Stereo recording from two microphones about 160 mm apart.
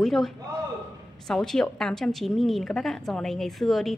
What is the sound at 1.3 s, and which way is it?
A woman's voice, 5° left (ahead or behind).